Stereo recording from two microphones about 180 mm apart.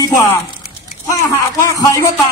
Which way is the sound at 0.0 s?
15° left (ahead or behind).